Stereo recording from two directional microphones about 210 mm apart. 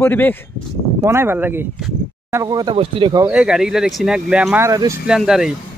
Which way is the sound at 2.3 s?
15° right (ahead or behind).